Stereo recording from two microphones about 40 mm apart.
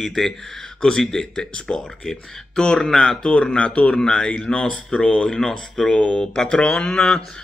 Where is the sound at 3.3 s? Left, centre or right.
Left.